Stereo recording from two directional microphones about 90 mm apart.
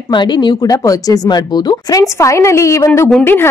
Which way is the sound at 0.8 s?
45° left (ahead or behind).